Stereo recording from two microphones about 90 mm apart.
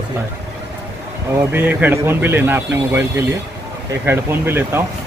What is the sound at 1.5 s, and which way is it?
Speech, 20° right (ahead or behind).